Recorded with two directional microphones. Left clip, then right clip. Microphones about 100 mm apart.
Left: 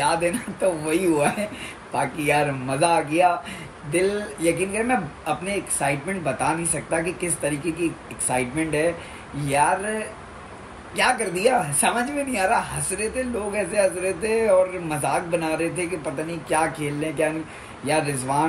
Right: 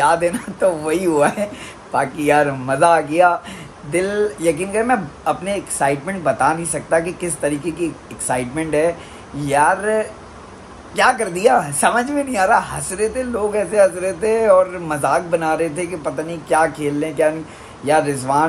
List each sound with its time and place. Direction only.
0.0 s speech: 35° right (ahead or behind)